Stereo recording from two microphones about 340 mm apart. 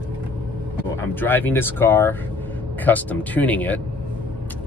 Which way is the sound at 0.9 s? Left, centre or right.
Centre.